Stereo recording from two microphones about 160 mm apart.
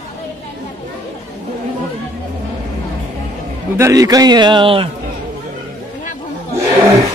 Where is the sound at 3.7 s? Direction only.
20° right (ahead or behind).